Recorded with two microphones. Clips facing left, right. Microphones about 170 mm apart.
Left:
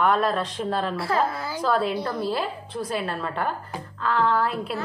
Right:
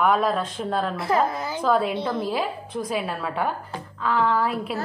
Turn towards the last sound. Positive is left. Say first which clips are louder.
# even
turn(degrees=-10)  # may be behind; listen again after turning